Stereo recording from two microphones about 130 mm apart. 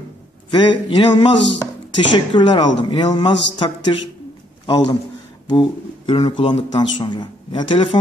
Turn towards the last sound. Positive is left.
turn(degrees=40)  # may be behind; listen again after turning